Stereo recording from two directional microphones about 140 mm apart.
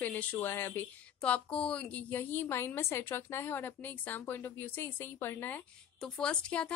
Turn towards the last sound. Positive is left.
turn(degrees=5)  # may be behind; listen again after turning